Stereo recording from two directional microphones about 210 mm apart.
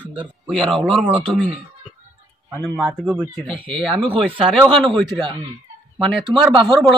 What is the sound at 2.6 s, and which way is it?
Speech, centre (ahead or behind).